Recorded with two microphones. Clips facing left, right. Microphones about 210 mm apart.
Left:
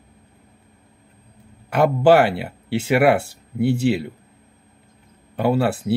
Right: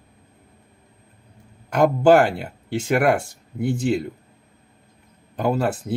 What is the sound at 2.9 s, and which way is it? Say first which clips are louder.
Speech: left 3 dB; 65° left (ahead or behind).